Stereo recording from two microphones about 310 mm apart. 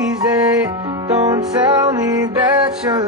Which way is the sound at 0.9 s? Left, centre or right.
Centre.